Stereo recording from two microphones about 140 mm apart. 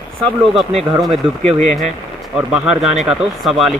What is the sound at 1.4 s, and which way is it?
Speech, 50° right (ahead or behind).